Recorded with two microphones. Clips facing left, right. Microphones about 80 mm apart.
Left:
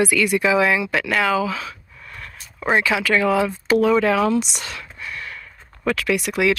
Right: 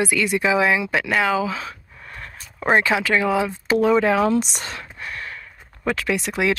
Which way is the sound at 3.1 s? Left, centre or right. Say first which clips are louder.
Left 2 dB; centre.